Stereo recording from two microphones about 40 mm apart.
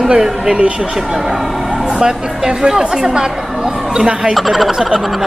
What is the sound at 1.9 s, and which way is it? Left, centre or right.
A woman's voice, centre.